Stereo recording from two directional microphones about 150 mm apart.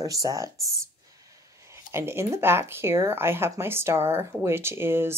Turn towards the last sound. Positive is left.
turn(degrees=-15)  # may be behind; listen again after turning